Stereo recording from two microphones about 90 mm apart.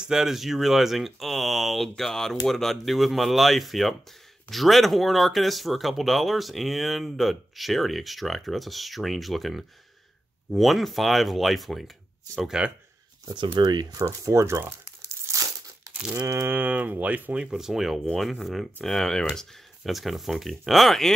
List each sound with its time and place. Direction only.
0.0 s speech: 5° right (ahead or behind)
13.6 s crumpling: 50° right (ahead or behind)
15.9 s cattle: 15° right (ahead or behind)
16.2 s a sound: 35° right (ahead or behind)
16.4 s speech: 20° right (ahead or behind); by 21.1 s centre (ahead or behind)